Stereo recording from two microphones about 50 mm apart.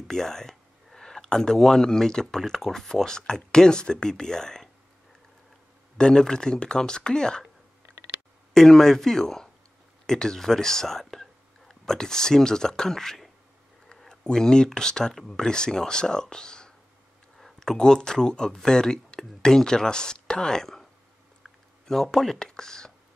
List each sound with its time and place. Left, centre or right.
0.1 s speech: centre
5.9 s speech: centre
8.5 s speech: centre
21.4 s a sound: centre